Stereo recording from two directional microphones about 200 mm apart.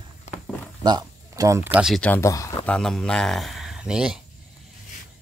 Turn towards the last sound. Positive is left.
turn(degrees=-5)  # may be behind; listen again after turning